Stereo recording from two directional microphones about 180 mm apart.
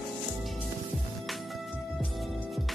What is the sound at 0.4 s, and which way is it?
Music, centre (ahead or behind).